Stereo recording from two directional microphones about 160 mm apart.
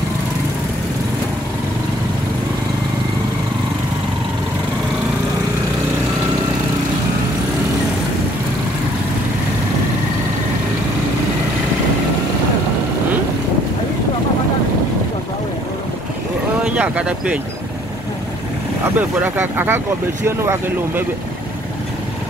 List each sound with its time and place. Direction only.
16.6 s speech: 10° right (ahead or behind)
18.9 s speech: 10° right (ahead or behind)